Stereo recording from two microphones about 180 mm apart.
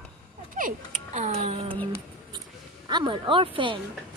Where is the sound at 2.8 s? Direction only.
25° right (ahead or behind).